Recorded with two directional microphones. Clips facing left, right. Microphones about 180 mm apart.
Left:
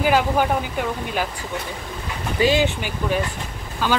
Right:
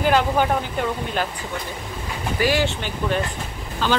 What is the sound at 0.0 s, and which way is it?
Speech, 5° left (ahead or behind).